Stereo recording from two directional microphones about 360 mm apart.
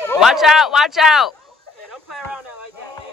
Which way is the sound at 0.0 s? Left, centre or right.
Centre.